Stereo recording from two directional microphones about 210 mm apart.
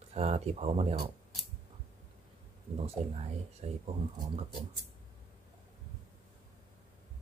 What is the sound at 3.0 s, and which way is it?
Speech, 30° right (ahead or behind).